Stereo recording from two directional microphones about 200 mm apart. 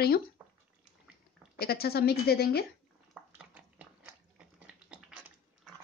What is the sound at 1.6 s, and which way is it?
Speech, 50° left (ahead or behind).